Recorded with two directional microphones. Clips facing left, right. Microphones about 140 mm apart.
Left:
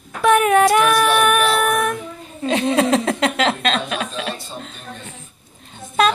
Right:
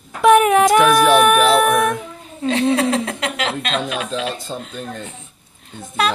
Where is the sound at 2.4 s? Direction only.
15° left (ahead or behind).